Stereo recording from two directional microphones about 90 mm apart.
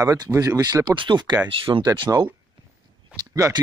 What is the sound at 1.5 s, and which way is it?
Speech, 80° right.